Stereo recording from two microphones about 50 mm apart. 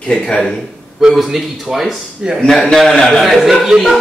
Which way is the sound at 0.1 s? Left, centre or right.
Left.